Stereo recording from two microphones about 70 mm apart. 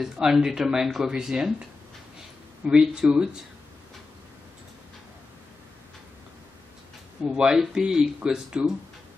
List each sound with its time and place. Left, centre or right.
0.0 s speech: centre
7.2 s speech: centre